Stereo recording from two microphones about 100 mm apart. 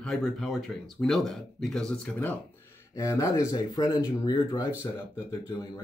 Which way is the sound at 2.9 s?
35° left (ahead or behind).